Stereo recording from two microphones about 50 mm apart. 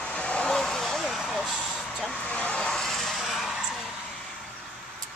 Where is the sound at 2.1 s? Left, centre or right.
Left.